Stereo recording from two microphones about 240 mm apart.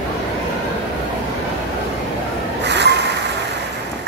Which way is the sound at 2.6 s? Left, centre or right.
Right.